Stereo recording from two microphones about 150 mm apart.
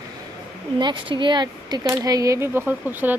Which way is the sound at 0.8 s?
30° right (ahead or behind).